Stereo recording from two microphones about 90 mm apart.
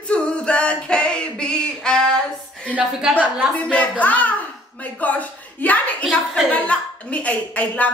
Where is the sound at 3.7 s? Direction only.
15° left (ahead or behind).